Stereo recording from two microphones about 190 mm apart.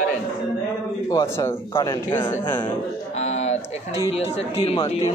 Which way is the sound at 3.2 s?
35° left (ahead or behind).